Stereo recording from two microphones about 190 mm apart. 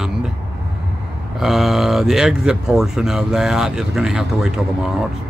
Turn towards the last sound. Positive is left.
turn(degrees=-5)  # may be behind; listen again after turning